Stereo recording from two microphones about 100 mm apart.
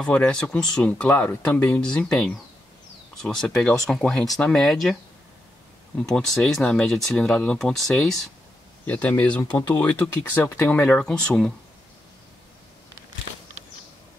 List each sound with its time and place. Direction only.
0.0 s speech: 10° left (ahead or behind)
5.9 s speech: 5° left (ahead or behind)
8.8 s speech: 15° left (ahead or behind)